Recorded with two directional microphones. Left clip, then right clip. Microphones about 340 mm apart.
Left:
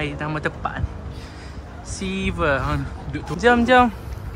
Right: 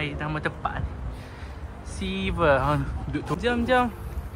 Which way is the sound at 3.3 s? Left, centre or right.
Left.